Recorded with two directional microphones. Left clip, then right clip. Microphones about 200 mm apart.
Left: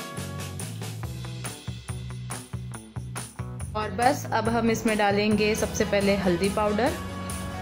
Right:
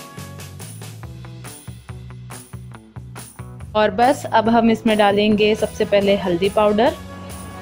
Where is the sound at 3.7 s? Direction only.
30° right (ahead or behind).